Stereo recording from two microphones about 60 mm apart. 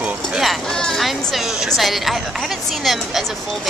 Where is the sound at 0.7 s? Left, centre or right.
Centre.